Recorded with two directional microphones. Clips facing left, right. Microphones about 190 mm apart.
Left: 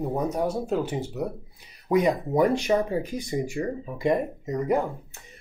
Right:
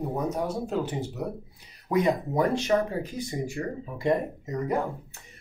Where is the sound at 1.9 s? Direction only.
15° left (ahead or behind).